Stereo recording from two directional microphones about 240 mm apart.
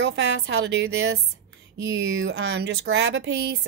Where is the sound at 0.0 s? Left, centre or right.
Right.